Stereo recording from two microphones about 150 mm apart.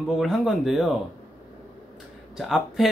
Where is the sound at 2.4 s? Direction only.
5° right (ahead or behind).